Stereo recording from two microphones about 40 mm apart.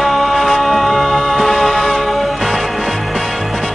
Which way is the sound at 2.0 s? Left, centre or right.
Centre.